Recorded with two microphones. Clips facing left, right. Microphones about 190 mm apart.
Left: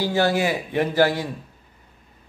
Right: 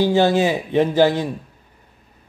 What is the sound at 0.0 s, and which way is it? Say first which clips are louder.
Speech: right 5 dB; 20° right (ahead or behind).